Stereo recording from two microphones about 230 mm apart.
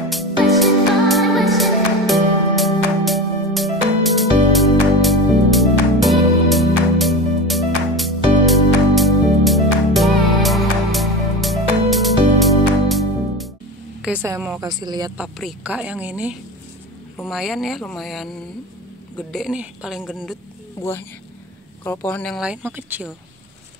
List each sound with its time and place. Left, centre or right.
0.1 s music: centre
14.0 s a woman's voice: centre
15.1 s speech: centre
21.8 s speech: centre